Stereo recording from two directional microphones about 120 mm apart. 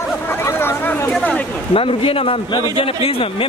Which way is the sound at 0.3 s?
20° left (ahead or behind).